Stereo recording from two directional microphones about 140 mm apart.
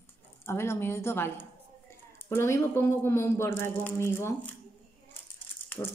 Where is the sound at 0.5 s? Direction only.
20° left (ahead or behind).